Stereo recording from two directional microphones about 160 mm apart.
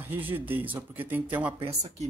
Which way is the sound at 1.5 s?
40° right (ahead or behind).